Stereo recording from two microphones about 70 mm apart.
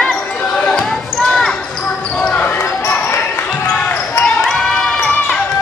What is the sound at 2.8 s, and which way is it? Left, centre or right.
Basketball bounce, left.